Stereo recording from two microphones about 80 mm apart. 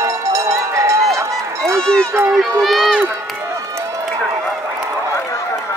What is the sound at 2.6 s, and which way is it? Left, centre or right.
Speech, centre.